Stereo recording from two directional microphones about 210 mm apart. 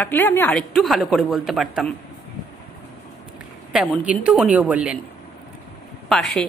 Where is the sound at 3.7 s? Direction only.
Centre (ahead or behind).